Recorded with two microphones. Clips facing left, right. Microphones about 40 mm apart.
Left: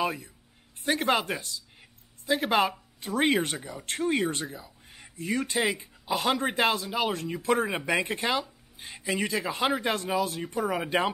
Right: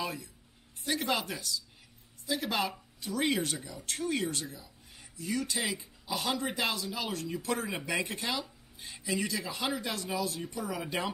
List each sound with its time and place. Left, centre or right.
0.0 s speech: left